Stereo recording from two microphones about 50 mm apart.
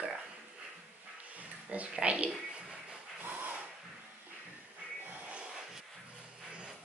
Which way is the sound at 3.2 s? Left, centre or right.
Right.